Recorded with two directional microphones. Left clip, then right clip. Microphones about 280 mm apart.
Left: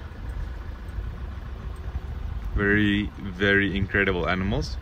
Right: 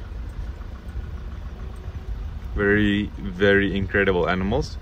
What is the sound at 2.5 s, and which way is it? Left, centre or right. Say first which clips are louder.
Speech: right 2 dB; centre.